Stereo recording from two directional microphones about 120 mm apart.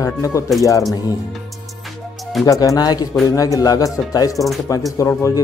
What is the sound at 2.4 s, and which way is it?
Speech, 30° left (ahead or behind).